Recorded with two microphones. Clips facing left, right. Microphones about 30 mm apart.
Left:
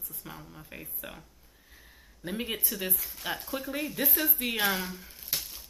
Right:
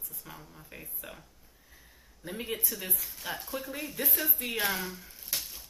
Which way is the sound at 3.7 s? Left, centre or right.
Left.